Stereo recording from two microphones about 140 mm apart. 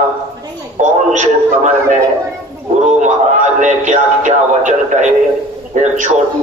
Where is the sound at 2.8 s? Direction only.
60° right (ahead or behind).